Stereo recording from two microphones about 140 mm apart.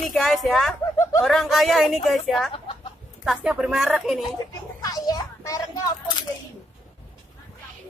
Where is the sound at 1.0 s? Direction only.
20° left (ahead or behind).